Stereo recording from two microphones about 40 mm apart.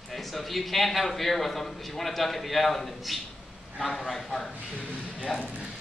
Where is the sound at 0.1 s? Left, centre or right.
Centre.